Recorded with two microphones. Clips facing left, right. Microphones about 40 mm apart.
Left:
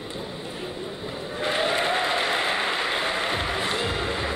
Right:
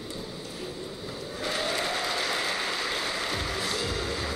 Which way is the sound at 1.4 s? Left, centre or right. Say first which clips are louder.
Left 6 dB; left.